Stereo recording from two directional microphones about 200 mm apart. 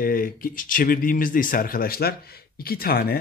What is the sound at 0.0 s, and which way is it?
A man's voice, 45° left (ahead or behind).